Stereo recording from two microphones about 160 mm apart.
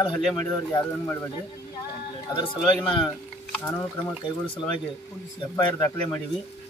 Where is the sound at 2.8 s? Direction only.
30° left (ahead or behind).